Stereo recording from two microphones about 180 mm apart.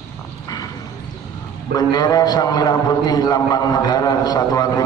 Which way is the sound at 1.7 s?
20° left (ahead or behind).